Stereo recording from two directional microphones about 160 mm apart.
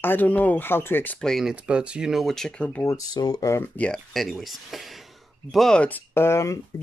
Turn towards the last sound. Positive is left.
turn(degrees=15)  # may be behind; listen again after turning